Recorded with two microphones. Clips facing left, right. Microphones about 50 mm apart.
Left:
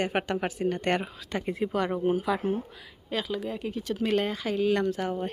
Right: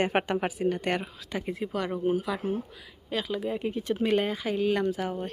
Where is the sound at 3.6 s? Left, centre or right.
Right.